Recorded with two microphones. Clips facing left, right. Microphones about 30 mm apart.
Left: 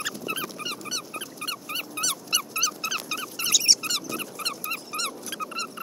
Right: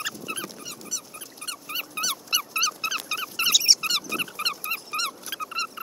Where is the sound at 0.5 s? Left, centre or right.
Left.